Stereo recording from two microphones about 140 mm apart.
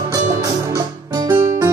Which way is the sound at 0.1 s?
25° right (ahead or behind).